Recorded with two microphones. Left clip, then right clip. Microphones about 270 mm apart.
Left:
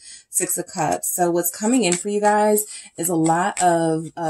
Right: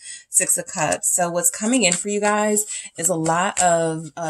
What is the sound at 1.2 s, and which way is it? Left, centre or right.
Speech, right.